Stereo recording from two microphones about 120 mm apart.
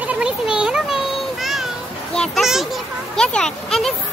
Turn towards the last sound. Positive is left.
turn(degrees=5)  # may be behind; listen again after turning